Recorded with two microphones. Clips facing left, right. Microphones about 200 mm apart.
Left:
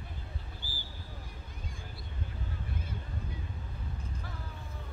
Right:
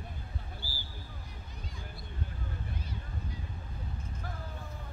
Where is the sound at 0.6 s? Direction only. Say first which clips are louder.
Right 1 dB; 15° left (ahead or behind).